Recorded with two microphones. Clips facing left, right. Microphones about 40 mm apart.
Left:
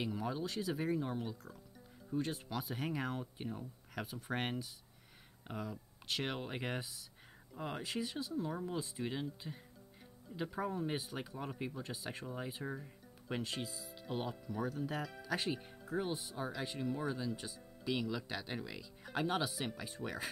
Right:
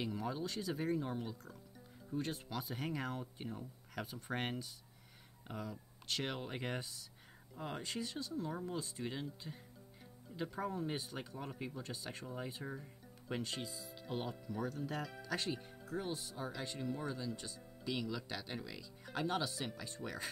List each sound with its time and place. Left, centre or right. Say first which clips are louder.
0.0 s speech: left 1 dB; centre
16.5 s speech: left 3 dB; centre